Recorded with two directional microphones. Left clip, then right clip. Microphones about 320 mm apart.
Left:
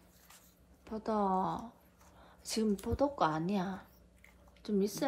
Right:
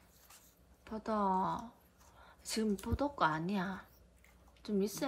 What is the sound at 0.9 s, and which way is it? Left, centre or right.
Speech, centre.